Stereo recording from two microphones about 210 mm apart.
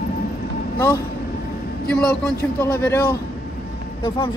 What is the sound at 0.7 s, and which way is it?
Speech, 15° left (ahead or behind).